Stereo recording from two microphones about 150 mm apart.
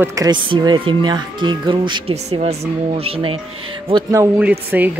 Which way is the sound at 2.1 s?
45° right (ahead or behind).